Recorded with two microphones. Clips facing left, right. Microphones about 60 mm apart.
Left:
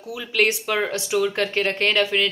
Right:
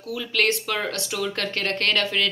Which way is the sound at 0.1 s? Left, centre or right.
Centre.